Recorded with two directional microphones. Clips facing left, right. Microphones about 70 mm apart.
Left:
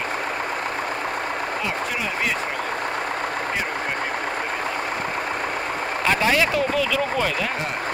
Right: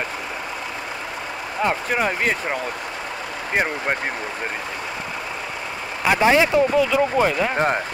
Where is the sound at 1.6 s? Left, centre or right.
Right.